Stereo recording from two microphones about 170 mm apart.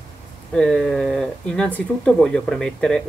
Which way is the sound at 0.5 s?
5° left (ahead or behind).